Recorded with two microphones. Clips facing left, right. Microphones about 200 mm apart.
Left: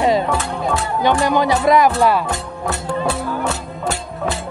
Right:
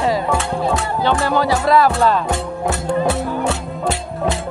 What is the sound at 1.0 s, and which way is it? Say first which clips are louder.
Speech: left 2 dB; 15° left (ahead or behind).